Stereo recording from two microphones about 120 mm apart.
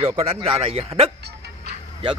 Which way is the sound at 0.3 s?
50° right (ahead or behind).